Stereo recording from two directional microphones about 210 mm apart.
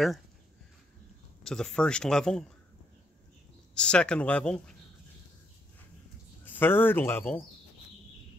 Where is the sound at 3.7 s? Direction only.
5° left (ahead or behind).